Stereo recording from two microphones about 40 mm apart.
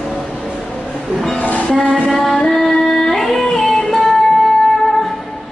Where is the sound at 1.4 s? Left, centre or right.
Left.